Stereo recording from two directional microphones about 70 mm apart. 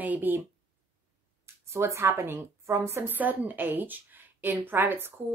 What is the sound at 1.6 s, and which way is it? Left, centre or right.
A woman's voice, right.